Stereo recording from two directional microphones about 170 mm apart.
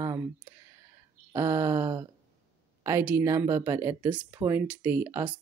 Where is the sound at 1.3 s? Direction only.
15° right (ahead or behind).